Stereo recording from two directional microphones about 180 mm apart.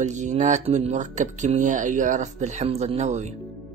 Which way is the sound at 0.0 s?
40° right (ahead or behind).